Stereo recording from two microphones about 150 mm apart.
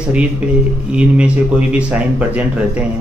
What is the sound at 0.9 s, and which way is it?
A man's voice, 5° right (ahead or behind).